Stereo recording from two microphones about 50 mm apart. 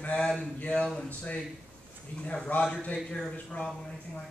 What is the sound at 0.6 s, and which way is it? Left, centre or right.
A man's voice, left.